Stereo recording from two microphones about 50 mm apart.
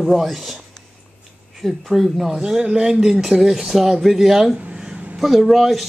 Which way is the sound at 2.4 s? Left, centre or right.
Centre.